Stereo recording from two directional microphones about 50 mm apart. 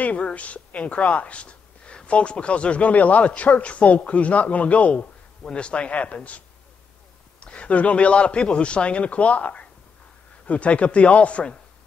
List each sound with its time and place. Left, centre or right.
0.0 s a woman's voice: left
7.4 s a woman's voice: left